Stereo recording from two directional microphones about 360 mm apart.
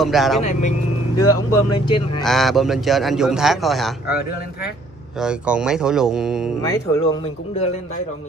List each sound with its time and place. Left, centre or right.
0.0 s a man's voice: centre
0.4 s speech: centre
1.1 s speech: left
1.7 s speech: centre
2.2 s a man's voice: centre
5.2 s a man's voice: centre
6.6 s speech: centre